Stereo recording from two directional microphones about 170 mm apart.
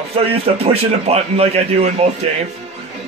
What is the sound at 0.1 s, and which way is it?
A man's voice, 35° right (ahead or behind).